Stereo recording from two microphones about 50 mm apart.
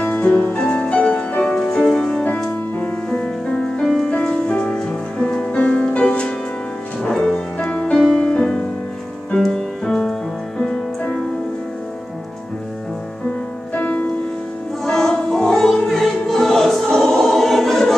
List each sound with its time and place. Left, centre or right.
0.0 s music: left
0.6 s music: centre
1.5 s music: centre
2.2 s music: left
3.8 s music: centre
4.1 s music: centre
5.6 s music: left
7.0 s music: centre
9.8 s music: centre
13.7 s music: left
14.9 s music: centre